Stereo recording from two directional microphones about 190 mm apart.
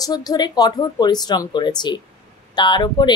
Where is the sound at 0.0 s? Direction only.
20° left (ahead or behind).